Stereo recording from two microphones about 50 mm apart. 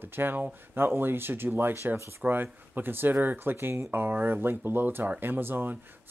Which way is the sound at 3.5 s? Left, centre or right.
Right.